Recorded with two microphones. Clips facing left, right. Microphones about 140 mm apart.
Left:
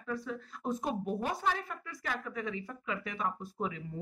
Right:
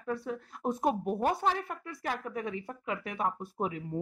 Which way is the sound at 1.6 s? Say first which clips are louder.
Right 4 dB; 60° right (ahead or behind).